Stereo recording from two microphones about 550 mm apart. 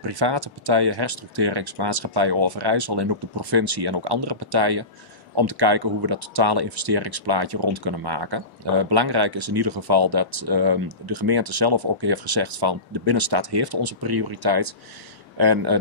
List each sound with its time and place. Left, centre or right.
0.0 s speech: right